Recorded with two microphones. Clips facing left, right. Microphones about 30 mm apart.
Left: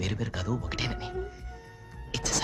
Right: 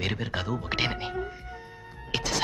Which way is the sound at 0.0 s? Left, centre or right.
Right.